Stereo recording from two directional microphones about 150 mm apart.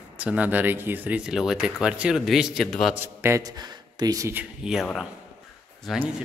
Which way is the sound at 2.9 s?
15° right (ahead or behind).